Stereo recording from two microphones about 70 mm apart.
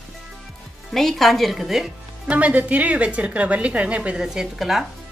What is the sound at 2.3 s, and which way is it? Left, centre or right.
A woman's voice, right.